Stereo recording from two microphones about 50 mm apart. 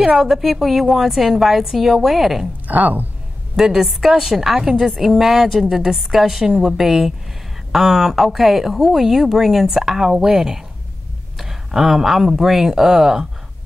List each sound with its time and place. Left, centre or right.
0.2 s a woman's voice: centre
2.7 s speech: right
3.5 s a woman's voice: centre